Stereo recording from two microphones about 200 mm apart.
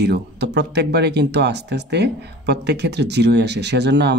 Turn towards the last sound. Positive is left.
turn(degrees=-60)  # may be behind; listen again after turning